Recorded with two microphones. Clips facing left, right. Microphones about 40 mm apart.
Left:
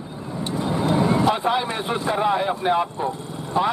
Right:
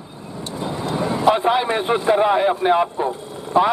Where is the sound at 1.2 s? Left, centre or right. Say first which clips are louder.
Right 4 dB; centre.